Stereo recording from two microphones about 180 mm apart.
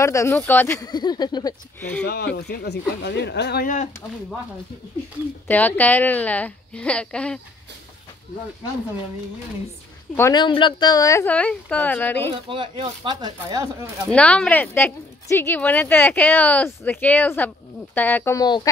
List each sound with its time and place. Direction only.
0.0 s speech: 15° left (ahead or behind)
1.8 s speech: 10° left (ahead or behind)
2.0 s speech: 65° left (ahead or behind)
3.6 s speech: 40° left (ahead or behind)
5.5 s speech: 10° left (ahead or behind)
10.1 s speech: 20° left (ahead or behind)
12.3 s speech: 30° right (ahead or behind)
14.1 s speech: 5° left (ahead or behind)